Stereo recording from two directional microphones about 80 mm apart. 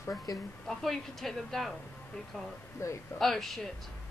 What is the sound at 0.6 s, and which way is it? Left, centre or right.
Speech, centre.